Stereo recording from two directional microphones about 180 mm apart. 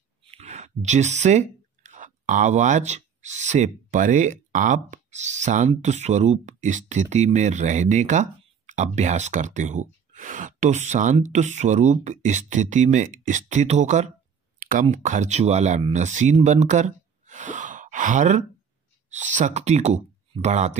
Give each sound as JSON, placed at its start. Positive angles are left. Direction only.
{"t": 0.2, "sound": "speech", "side_deg": -35}